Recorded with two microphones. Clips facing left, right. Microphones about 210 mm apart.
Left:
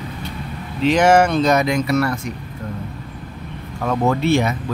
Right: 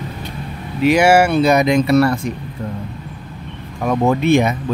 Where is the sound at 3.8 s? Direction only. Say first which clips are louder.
Right 3 dB; 15° right (ahead or behind).